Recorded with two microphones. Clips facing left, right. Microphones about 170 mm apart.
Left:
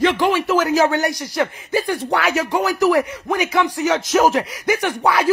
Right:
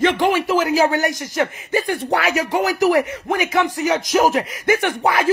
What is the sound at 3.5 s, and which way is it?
Speech, 45° right (ahead or behind).